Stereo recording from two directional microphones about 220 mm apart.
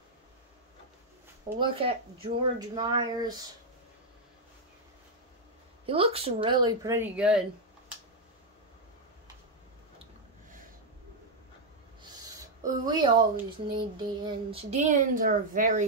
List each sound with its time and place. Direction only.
1.6 s speech: 25° right (ahead or behind)
5.9 s speech: 25° right (ahead or behind); by 7.4 s 5° right (ahead or behind)
12.0 s speech: 15° right (ahead or behind); by 15.8 s 40° right (ahead or behind)